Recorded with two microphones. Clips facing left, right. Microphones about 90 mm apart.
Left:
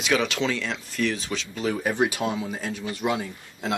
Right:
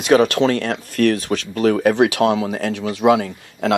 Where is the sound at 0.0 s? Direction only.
50° right (ahead or behind).